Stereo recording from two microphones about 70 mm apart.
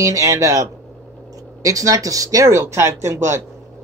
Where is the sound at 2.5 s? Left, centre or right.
Right.